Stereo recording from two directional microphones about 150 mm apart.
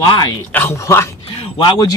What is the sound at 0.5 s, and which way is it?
Speech, 15° left (ahead or behind).